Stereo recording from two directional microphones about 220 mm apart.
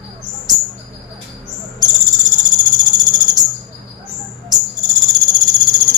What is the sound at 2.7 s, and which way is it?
Cricket, 20° right (ahead or behind).